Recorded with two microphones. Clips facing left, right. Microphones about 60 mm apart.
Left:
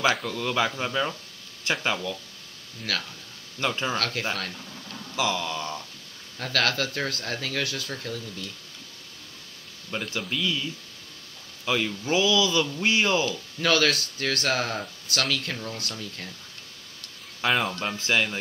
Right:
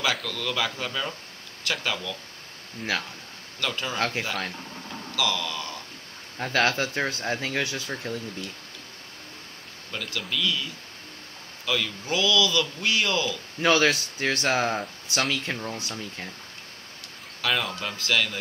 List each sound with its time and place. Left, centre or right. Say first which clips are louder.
0.0 s speech: left 3 dB; left
2.8 s speech: right 2 dB; right
3.5 s speech: left 3 dB; left
4.0 s speech: right 2 dB; right
5.1 s speech: left 1 dB; left
6.3 s speech: right 2 dB; right
9.8 s speech: left 2 dB; left
11.6 s speech: left 2 dB; left
13.6 s speech: right 2 dB; right
17.4 s speech: left 2 dB; left